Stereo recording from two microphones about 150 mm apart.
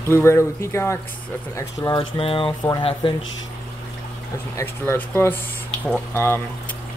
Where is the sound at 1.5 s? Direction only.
25° left (ahead or behind).